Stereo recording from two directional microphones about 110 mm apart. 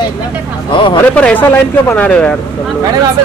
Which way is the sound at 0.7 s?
50° left (ahead or behind).